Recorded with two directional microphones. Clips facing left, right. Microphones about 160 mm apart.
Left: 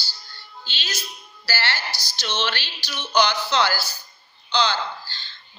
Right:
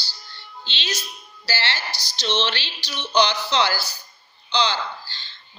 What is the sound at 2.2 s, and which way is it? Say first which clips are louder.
A woman's voice: right 3 dB; 25° right (ahead or behind).